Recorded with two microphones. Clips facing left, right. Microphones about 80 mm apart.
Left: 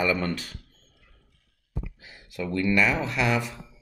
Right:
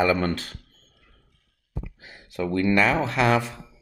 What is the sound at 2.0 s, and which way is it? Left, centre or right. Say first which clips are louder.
Speech: right 5 dB; right.